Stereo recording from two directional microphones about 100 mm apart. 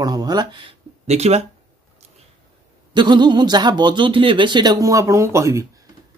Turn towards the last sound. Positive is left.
turn(degrees=-30)  # may be behind; listen again after turning